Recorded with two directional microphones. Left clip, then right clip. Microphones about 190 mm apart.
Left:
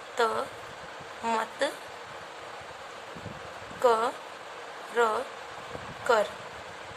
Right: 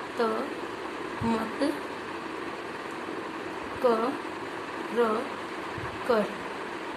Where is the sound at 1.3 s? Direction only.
15° left (ahead or behind).